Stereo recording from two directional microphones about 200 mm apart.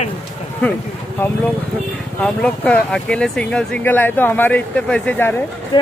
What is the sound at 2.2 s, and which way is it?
A man's voice, 5° left (ahead or behind).